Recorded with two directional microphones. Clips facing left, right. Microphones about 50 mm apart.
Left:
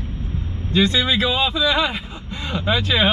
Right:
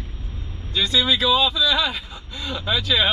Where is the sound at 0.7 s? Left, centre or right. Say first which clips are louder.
Left 3 dB; left.